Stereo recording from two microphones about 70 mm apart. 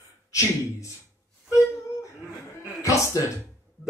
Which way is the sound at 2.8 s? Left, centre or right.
Left.